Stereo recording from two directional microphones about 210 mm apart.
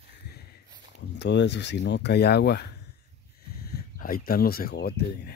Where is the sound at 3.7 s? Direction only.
45° left (ahead or behind).